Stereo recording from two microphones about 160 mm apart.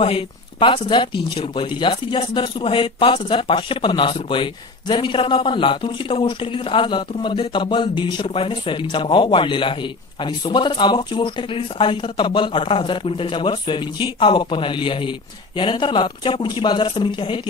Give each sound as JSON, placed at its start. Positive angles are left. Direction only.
{"t": 0.0, "sound": "speech", "side_deg": 35}